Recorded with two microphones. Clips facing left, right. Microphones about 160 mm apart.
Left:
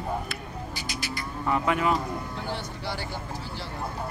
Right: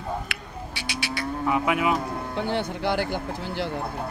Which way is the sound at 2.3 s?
65° right (ahead or behind).